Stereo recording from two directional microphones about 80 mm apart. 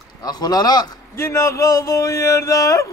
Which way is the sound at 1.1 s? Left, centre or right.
Left.